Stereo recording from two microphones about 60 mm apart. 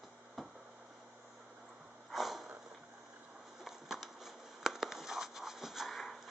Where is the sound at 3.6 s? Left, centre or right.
Centre.